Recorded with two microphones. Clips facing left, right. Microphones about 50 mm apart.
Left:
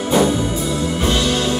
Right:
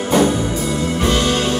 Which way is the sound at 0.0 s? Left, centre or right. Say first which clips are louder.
Right 1 dB; right.